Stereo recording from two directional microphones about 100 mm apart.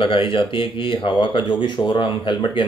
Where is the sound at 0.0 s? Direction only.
60° left (ahead or behind).